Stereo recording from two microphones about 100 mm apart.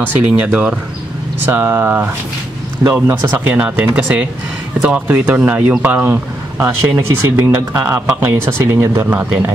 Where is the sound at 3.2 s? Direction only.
15° right (ahead or behind).